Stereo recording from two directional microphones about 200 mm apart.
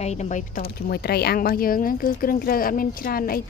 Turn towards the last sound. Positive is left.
turn(degrees=50)  # may be behind; listen again after turning